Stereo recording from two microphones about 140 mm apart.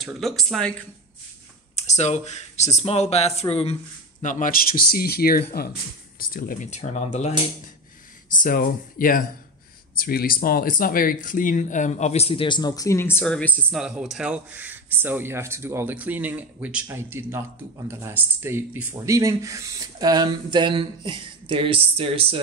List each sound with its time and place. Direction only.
0.0 s speech: centre (ahead or behind)
1.8 s speech: 55° left (ahead or behind)
4.2 s speech: 65° left (ahead or behind); by 6.7 s 85° left
6.7 s speech: 50° left (ahead or behind)
8.4 s speech: 85° left; by 13.7 s 10° left (ahead or behind)
13.7 s speech: 5° right (ahead or behind); by 22.4 s 40° right (ahead or behind)